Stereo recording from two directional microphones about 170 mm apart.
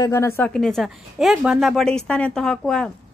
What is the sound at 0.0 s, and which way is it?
Speech, 15° left (ahead or behind).